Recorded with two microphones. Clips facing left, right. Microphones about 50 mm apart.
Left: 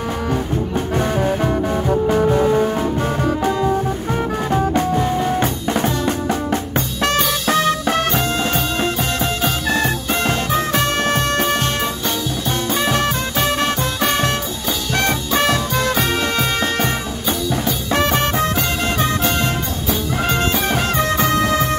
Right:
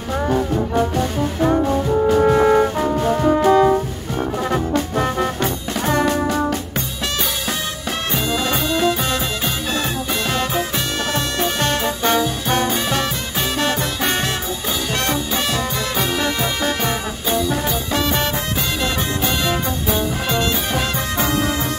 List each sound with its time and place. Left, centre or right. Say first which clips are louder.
3.4 s music: right 7 dB; right
6.0 s music: right 1 dB; left
7.0 s music: left 6 dB; left
9.4 s music: left 4 dB; left
11.6 s music: right 2 dB; right
12.8 s music: left 3 dB; left
15.0 s music: left 4 dB; left
17.9 s music: left 4 dB; left
20.2 s music: left 2 dB; left